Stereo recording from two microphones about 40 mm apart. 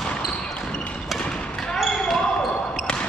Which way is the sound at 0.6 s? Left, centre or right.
Left.